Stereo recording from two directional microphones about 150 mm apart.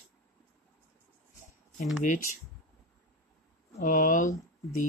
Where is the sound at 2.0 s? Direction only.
55° left (ahead or behind).